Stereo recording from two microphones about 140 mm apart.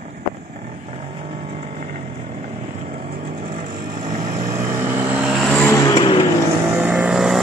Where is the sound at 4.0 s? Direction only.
35° right (ahead or behind).